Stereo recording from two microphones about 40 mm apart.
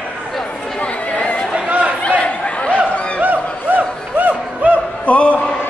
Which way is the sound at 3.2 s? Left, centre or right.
Right.